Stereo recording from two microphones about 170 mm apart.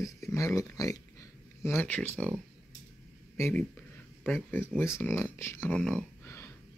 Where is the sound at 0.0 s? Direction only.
20° left (ahead or behind).